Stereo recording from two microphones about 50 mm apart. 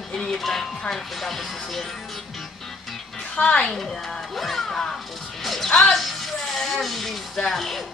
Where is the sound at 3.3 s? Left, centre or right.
Left.